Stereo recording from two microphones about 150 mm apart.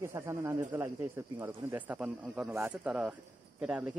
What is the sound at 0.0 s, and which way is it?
Speech, 20° right (ahead or behind).